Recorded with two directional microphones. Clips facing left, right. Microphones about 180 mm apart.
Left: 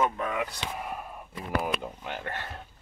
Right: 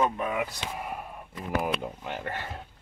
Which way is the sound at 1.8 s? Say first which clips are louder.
Right 2 dB; 5° right (ahead or behind).